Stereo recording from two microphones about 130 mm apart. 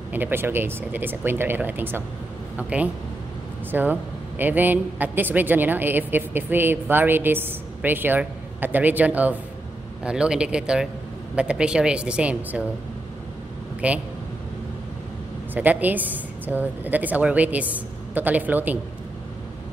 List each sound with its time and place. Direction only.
0.1 s speech: 15° right (ahead or behind)
13.7 s speech: 10° right (ahead or behind)
15.5 s speech: 10° right (ahead or behind)